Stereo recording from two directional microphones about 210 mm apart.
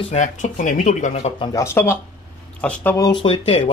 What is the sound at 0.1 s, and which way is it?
Speech, 35° left (ahead or behind).